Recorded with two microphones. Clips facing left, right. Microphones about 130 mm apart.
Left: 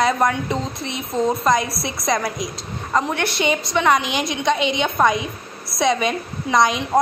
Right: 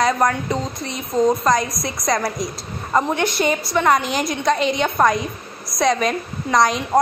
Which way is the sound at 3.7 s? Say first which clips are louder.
Right 1 dB; centre (ahead or behind).